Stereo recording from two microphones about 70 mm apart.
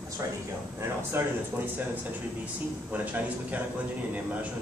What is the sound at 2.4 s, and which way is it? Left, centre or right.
Speech, right.